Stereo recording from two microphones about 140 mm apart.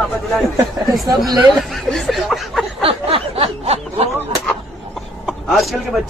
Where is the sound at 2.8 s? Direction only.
40° right (ahead or behind).